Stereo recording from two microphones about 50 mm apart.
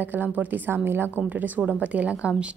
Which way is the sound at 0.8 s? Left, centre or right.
Right.